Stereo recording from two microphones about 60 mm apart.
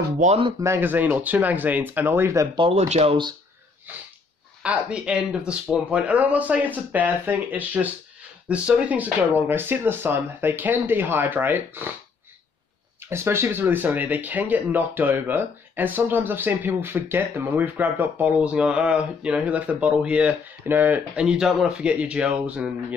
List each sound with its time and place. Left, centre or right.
0.7 s speech: right
4.6 s speech: centre; by 11.9 s right
13.0 s speech: right; by 20.2 s centre
20.6 s speech: right
21.2 s speech: centre